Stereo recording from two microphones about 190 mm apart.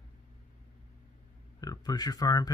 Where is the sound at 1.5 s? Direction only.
20° left (ahead or behind).